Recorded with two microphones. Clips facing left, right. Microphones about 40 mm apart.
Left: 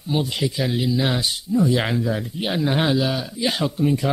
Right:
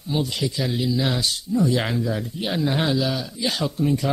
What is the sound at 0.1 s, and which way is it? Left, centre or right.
Speech, centre.